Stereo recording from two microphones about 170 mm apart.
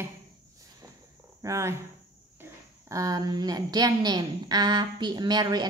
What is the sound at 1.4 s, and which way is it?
Speech, 15° right (ahead or behind).